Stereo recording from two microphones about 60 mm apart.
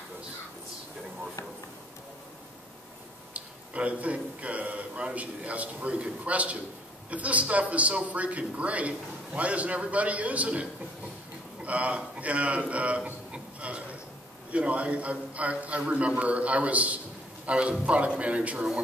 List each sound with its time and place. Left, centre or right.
3.3 s a man's voice: right